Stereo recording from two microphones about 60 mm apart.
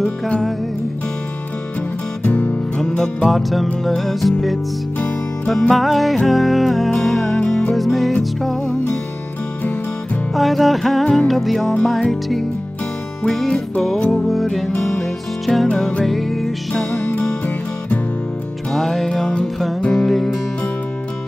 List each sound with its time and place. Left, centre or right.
0.0 s music: centre
2.2 s music: left
3.3 s music: centre
10.3 s music: centre
18.7 s music: centre